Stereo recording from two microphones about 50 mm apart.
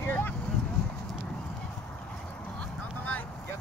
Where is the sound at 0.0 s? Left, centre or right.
Left.